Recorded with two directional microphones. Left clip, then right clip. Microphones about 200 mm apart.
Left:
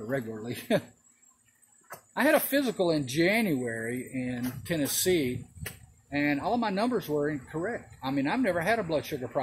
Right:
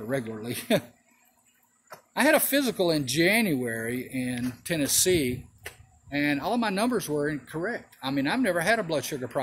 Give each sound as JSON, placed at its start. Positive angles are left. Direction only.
{"t": 0.1, "sound": "speech", "side_deg": -20}
{"t": 2.1, "sound": "speech", "side_deg": -15}